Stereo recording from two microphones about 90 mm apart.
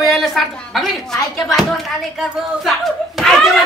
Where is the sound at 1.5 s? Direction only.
Centre (ahead or behind).